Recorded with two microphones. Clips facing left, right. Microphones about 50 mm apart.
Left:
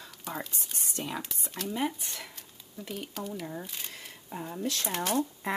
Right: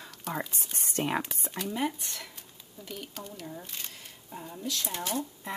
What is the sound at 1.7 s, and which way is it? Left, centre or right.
Speech, centre.